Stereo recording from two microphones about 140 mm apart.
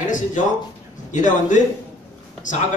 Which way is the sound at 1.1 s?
60° left (ahead or behind).